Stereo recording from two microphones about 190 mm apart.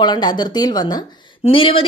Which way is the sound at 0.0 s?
20° left (ahead or behind).